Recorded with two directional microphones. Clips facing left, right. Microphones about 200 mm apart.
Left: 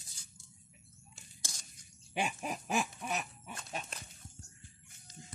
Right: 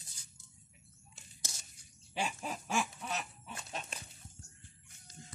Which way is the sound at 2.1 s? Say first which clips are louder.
Left 2 dB; 15° left (ahead or behind).